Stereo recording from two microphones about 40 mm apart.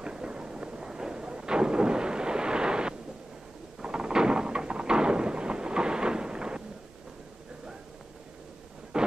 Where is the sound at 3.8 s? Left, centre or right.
Centre.